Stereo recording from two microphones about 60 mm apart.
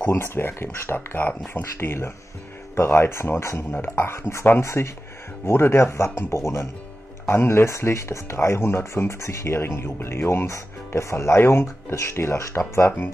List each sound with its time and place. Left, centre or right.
0.0 s speech: left